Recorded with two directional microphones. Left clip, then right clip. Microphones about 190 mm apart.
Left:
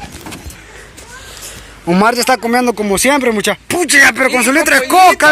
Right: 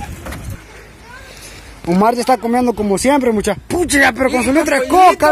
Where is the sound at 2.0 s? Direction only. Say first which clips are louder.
Left 1 dB; 10° right (ahead or behind).